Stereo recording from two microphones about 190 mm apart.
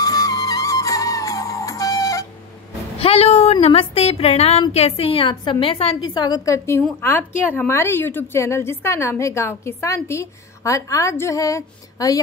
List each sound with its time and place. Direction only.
0.0 s music: 20° left (ahead or behind)
3.0 s a woman's voice: 30° left (ahead or behind)